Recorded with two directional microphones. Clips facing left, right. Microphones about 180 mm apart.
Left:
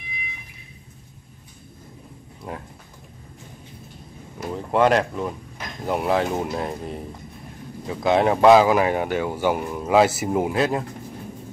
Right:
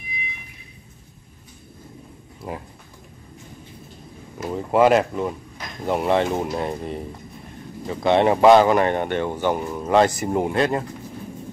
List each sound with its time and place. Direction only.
2.4 s speech: 5° right (ahead or behind)
4.4 s speech: 5° right (ahead or behind)